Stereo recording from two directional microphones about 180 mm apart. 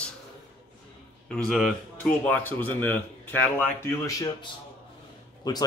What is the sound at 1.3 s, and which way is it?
Speech, 5° left (ahead or behind).